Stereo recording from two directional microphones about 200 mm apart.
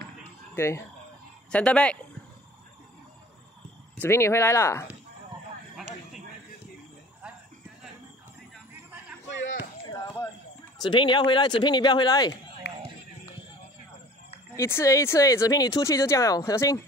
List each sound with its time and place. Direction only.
0.6 s speech: 15° left (ahead or behind)
3.9 s speech: 10° left (ahead or behind)
9.8 s a sound: 20° left (ahead or behind)
10.8 s speech: 25° left (ahead or behind)
14.5 s speech: 15° left (ahead or behind)